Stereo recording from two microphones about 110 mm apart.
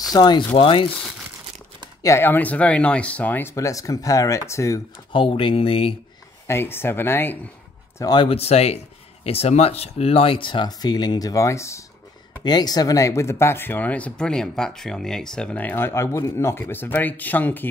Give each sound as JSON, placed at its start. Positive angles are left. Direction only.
{"t": 0.1, "sound": "speech", "side_deg": 40}
{"t": 0.6, "sound": "speech", "side_deg": 55}
{"t": 2.0, "sound": "speech", "side_deg": 20}
{"t": 3.5, "sound": "speech", "side_deg": 30}
{"t": 5.1, "sound": "speech", "side_deg": 55}
{"t": 6.4, "sound": "speech", "side_deg": 20}
{"t": 8.0, "sound": "speech", "side_deg": 40}
{"t": 8.3, "sound": "speech", "side_deg": 70}
{"t": 12.4, "sound": "speech", "side_deg": 35}